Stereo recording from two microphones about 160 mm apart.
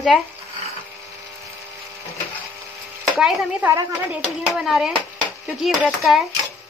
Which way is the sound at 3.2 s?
5° right (ahead or behind).